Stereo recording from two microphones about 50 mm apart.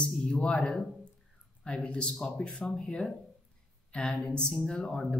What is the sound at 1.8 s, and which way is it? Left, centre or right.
Speech, centre.